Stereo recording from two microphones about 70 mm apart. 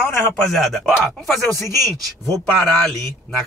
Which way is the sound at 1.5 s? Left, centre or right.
Left.